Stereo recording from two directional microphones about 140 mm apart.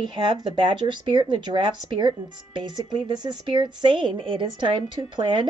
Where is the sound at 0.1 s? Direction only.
35° right (ahead or behind).